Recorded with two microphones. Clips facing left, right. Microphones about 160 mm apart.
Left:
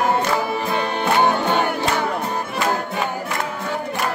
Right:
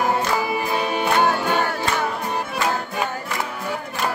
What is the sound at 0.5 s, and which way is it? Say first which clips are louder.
Music: even; 10° right (ahead or behind).